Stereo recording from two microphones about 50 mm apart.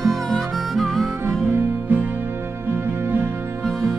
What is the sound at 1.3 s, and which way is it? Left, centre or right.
Music, right.